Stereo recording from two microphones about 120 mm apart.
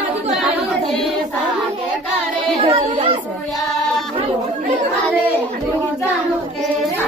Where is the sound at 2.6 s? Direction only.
50° right (ahead or behind).